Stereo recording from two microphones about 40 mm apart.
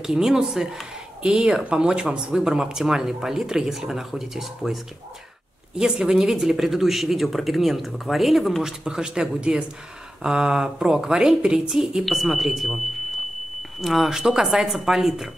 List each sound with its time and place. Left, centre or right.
0.0 s speech: centre; by 1.9 s right
2.3 s speech: centre
5.8 s speech: centre
8.6 s speech: centre
12.0 s speech: centre